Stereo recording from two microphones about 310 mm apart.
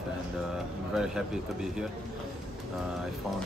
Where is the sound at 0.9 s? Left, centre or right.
Centre.